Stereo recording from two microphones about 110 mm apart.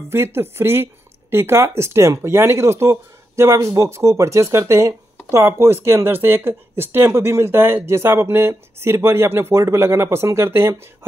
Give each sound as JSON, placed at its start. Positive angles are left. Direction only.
{"t": 0.1, "sound": "speech", "side_deg": -25}